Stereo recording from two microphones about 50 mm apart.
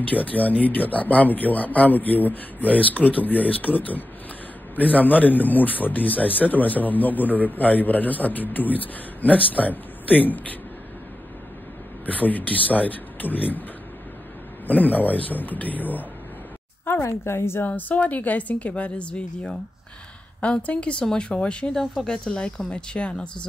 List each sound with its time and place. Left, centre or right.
0.1 s speech: left
12.1 s speech: left
14.7 s speech: left
17.0 s a woman's voice: left
17.6 s a woman's voice: left